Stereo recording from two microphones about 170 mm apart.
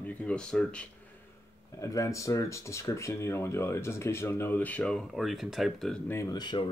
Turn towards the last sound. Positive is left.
turn(degrees=25)  # may be behind; listen again after turning